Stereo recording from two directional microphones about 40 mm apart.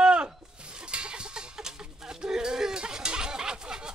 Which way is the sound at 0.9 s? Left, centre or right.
Right.